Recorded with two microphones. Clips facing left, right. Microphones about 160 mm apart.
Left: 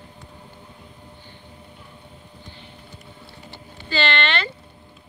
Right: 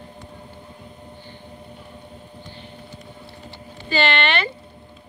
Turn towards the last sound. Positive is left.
turn(degrees=-15)  # may be behind; listen again after turning